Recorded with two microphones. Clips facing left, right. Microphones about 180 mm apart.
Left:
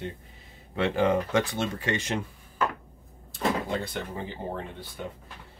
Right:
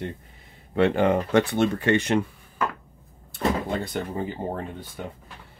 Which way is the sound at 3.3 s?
50° right (ahead or behind).